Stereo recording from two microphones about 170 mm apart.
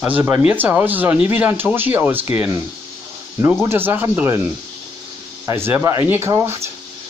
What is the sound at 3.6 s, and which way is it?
Speech, 10° right (ahead or behind).